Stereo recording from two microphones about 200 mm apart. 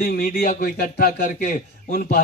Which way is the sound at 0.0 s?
45° left (ahead or behind).